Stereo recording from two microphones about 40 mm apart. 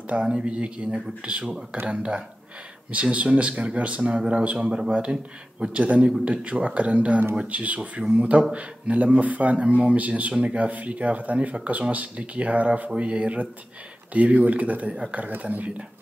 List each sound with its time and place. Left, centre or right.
0.0 s speech: right